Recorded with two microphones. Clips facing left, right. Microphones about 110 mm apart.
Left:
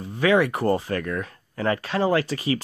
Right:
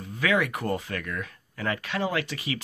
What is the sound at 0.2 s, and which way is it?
Speech, 30° left (ahead or behind).